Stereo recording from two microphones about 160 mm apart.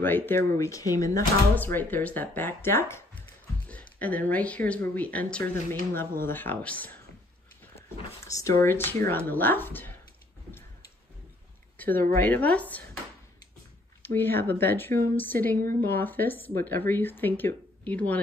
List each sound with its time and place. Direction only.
0.0 s speech: 15° left (ahead or behind)
8.4 s speech: 15° left (ahead or behind)
11.7 s a sound: 10° left (ahead or behind)
12.1 s speech: 10° left (ahead or behind)
14.0 s speech: 15° left (ahead or behind)